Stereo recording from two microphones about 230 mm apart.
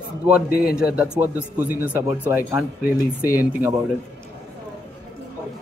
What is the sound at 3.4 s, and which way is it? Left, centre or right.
Speech, centre.